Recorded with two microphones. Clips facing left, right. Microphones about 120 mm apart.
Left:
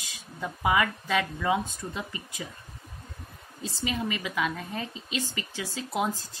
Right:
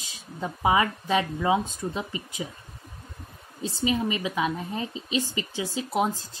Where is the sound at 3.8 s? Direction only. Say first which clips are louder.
Right 5 dB; 20° right (ahead or behind).